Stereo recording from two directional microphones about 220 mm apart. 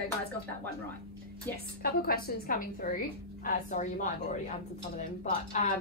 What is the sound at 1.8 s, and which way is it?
A woman's voice, 45° left (ahead or behind).